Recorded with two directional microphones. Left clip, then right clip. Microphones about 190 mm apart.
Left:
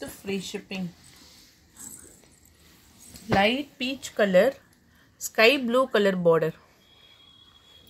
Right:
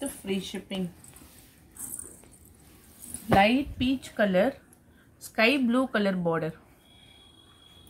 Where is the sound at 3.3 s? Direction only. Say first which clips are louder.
Right 1 dB; 40° left (ahead or behind).